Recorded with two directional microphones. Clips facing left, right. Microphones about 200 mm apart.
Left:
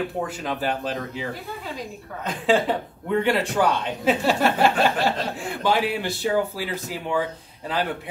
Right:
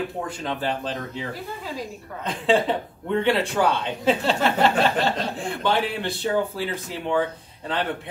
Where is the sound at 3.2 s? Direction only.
Centre (ahead or behind).